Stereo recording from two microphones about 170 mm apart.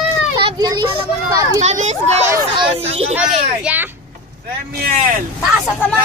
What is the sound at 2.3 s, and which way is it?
Speech, 30° right (ahead or behind).